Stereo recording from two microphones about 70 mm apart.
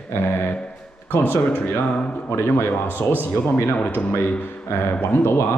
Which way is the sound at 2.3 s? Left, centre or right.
Left.